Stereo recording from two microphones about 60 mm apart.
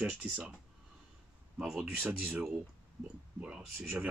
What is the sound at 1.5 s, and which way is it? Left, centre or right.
Speech, centre.